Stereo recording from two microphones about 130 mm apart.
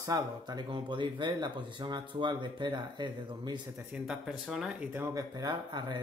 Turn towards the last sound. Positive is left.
turn(degrees=-35)  # may be behind; listen again after turning